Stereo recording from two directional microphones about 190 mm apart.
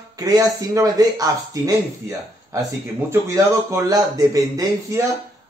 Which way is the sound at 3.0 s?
15° right (ahead or behind).